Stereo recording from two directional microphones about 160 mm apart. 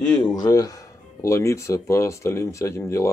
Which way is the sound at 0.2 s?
25° left (ahead or behind).